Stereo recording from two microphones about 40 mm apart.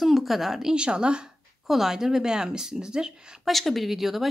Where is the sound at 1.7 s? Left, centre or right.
Centre.